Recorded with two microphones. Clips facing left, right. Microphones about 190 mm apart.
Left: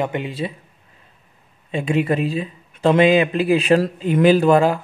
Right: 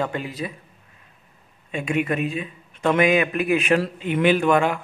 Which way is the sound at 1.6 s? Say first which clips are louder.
Left 4 dB; 30° left (ahead or behind).